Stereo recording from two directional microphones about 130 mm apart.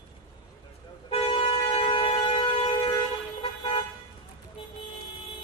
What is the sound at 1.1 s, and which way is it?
Vehicle, 45° left (ahead or behind).